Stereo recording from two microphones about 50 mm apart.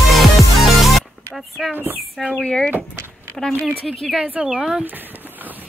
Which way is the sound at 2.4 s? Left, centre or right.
Centre.